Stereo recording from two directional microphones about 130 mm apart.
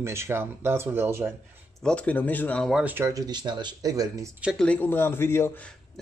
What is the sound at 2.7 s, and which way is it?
Speech, 15° right (ahead or behind).